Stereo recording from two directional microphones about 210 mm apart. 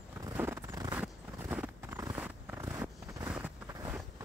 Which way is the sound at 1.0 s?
5° right (ahead or behind).